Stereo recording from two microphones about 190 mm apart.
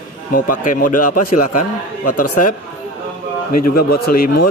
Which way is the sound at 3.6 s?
55° left (ahead or behind).